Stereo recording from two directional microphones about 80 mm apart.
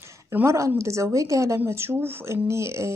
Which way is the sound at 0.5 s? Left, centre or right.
Right.